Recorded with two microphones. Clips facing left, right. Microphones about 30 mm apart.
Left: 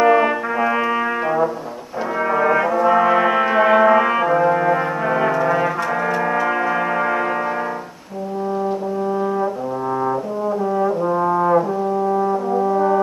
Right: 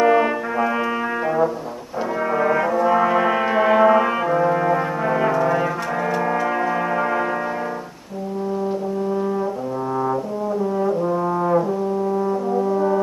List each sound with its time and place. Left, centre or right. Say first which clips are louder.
0.0 s brass instrument: left 2 dB; centre
10.8 s brass instrument: left 3 dB; centre